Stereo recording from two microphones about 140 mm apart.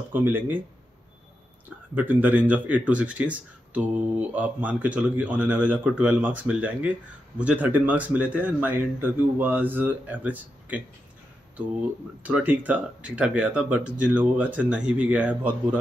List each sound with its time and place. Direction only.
0.1 s speech: 15° right (ahead or behind)
2.0 s speech: 10° right (ahead or behind)
12.2 s speech: 10° right (ahead or behind)